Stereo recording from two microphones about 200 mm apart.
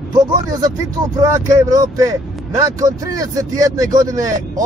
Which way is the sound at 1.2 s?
15° right (ahead or behind).